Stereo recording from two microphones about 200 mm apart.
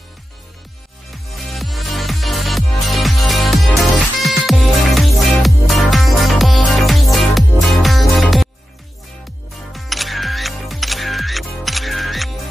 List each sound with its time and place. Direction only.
1.3 s music: centre (ahead or behind)
9.7 s music: centre (ahead or behind)